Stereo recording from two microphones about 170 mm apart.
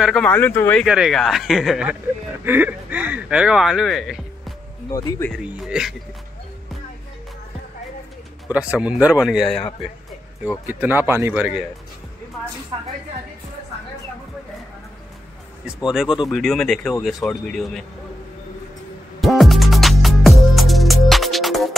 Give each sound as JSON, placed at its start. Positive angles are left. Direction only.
{"t": 0.0, "sound": "speech", "side_deg": 5}
{"t": 0.8, "sound": "speech", "side_deg": -5}
{"t": 4.9, "sound": "speech", "side_deg": 20}
{"t": 5.3, "sound": "speech", "side_deg": -5}
{"t": 8.5, "sound": "speech", "side_deg": -10}
{"t": 9.6, "sound": "speech", "side_deg": 30}
{"t": 10.7, "sound": "speech", "side_deg": -10}
{"t": 12.7, "sound": "a woman's voice", "side_deg": -30}
{"t": 15.6, "sound": "speech", "side_deg": -5}
{"t": 19.2, "sound": "music", "side_deg": 0}